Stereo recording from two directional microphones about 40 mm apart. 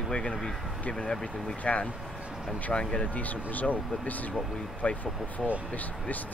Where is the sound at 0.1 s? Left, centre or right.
Left.